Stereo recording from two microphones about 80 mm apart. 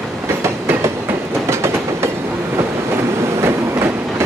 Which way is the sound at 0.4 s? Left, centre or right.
Right.